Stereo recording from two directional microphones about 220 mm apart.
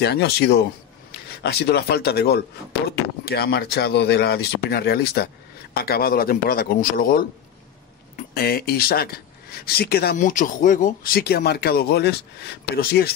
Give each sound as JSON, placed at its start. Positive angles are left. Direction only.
{"t": 0.0, "sound": "speech", "side_deg": 50}
{"t": 8.4, "sound": "speech", "side_deg": 45}